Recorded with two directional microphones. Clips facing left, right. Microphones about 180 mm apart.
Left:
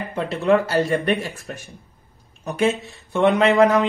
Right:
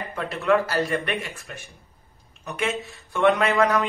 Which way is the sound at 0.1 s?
25° left (ahead or behind).